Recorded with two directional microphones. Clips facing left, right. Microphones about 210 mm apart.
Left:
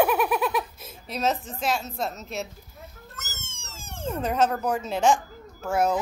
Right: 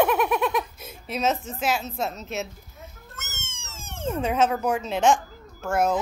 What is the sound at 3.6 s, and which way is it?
Cat, 35° left (ahead or behind).